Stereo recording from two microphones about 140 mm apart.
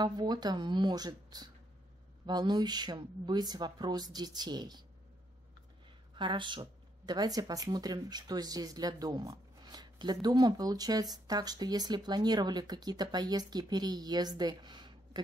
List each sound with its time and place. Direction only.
0.0 s speech: 30° right (ahead or behind)
6.1 s speech: 35° right (ahead or behind)